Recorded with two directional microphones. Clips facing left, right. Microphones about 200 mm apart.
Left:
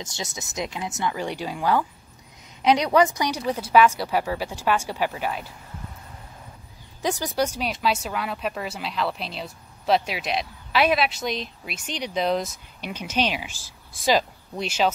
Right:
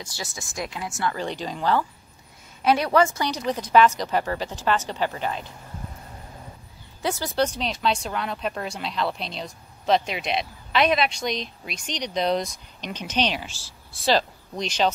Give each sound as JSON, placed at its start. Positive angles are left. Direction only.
{"t": 0.0, "sound": "a woman's voice", "side_deg": 20}
{"t": 7.0, "sound": "a woman's voice", "side_deg": 15}